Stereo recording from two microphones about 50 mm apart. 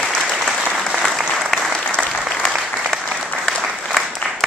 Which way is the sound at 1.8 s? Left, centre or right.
Left.